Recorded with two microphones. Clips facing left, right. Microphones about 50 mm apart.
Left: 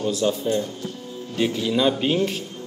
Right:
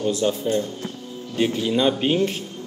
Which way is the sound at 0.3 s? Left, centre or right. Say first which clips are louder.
Even; right.